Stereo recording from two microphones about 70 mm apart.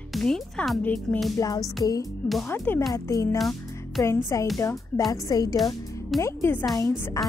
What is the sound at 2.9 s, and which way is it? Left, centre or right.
Speech, left.